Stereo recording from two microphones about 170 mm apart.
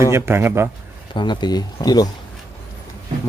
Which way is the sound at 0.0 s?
15° right (ahead or behind).